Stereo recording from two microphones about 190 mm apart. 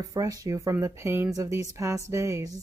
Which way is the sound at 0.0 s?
20° right (ahead or behind).